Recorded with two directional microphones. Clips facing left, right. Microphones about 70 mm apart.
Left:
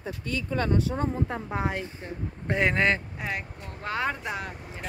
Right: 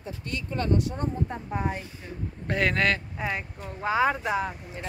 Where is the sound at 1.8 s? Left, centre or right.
Left.